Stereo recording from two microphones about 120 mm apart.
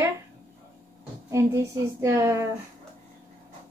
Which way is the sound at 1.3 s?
25° right (ahead or behind).